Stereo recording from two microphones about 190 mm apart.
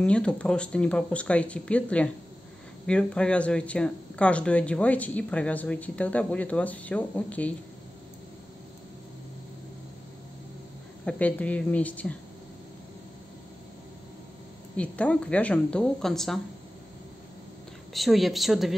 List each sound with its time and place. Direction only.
0.0 s speech: 5° left (ahead or behind)
11.1 s speech: 5° left (ahead or behind)
14.8 s speech: 5° left (ahead or behind)
17.9 s speech: centre (ahead or behind)